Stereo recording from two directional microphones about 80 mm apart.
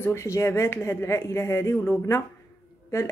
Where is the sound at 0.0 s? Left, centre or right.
Left.